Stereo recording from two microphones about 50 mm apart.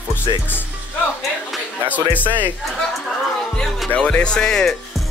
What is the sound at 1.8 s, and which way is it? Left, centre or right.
Speech, left.